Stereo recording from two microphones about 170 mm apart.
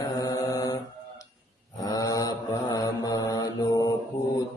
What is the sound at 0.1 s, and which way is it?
Mantra, 20° left (ahead or behind).